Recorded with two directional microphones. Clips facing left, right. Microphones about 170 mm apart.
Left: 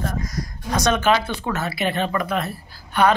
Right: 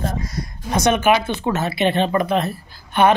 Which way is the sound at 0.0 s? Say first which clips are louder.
Right 1 dB; 25° right (ahead or behind).